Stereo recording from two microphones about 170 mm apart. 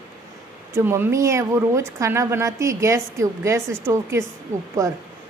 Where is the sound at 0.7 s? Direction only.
15° right (ahead or behind).